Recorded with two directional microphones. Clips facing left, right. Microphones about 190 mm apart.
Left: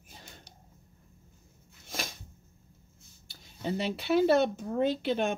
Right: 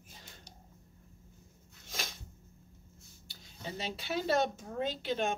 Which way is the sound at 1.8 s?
55° left (ahead or behind).